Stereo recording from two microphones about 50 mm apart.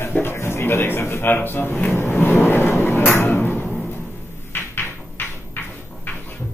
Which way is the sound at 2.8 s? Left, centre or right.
Left.